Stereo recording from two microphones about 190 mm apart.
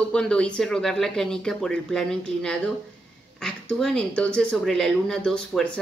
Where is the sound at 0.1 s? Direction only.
5° left (ahead or behind).